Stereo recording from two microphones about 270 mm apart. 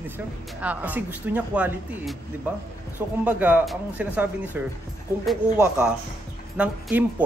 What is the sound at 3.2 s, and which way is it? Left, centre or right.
A woman's voice, centre.